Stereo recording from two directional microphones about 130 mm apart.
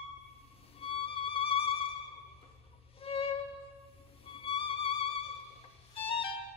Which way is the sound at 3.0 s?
45° left (ahead or behind).